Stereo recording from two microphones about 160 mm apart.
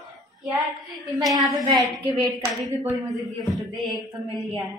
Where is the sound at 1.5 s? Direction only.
20° right (ahead or behind).